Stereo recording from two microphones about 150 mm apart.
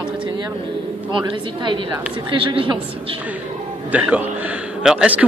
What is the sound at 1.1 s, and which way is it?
A woman's voice, 30° right (ahead or behind).